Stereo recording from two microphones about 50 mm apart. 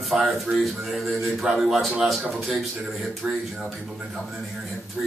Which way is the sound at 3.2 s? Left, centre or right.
Centre.